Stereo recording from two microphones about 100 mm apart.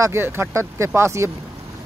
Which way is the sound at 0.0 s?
25° right (ahead or behind).